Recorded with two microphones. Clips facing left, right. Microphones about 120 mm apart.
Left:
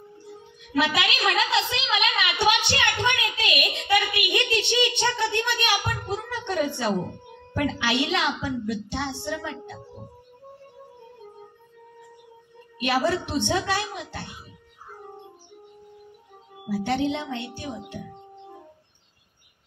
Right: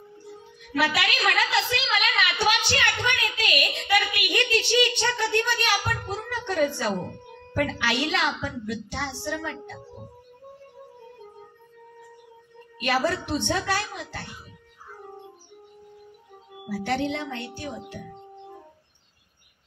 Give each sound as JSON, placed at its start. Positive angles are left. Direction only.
{"t": 0.7, "sound": "a woman's voice", "side_deg": 20}
{"t": 12.8, "sound": "a child's voice", "side_deg": 20}
{"t": 16.6, "sound": "a child's voice", "side_deg": 20}